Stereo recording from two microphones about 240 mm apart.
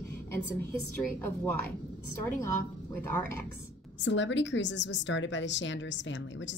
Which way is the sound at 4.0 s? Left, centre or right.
Left.